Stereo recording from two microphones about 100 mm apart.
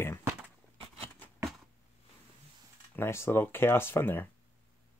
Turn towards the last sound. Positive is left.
turn(degrees=20)  # may be behind; listen again after turning